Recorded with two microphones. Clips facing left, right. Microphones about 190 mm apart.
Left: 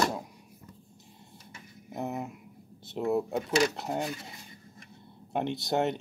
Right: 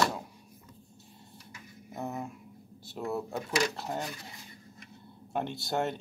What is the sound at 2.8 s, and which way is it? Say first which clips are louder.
Speech: left 6 dB; 20° left (ahead or behind).